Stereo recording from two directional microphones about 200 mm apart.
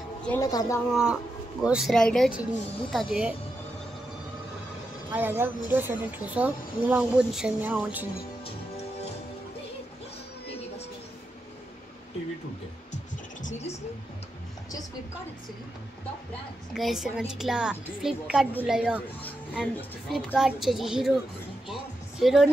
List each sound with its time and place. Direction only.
0.3 s speech: 20° left (ahead or behind)
1.6 s a woman's voice: 5° right (ahead or behind)
5.1 s a woman's voice: 10° right (ahead or behind)
13.5 s a woman's voice: 35° left (ahead or behind)
16.7 s a woman's voice: centre (ahead or behind)
22.2 s a woman's voice: centre (ahead or behind)